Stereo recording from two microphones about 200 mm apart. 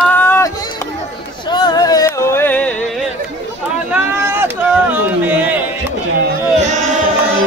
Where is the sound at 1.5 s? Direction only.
20° left (ahead or behind).